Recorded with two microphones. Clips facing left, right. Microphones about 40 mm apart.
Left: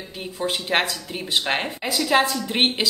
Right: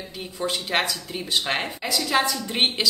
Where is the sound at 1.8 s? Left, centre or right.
Centre.